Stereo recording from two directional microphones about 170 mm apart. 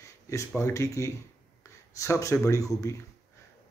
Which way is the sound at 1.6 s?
15° left (ahead or behind).